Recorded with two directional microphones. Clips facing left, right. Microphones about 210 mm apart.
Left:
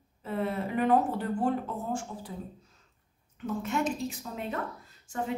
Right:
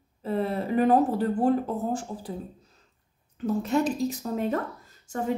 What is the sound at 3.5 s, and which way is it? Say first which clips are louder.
Speech: right 5 dB; 35° right (ahead or behind).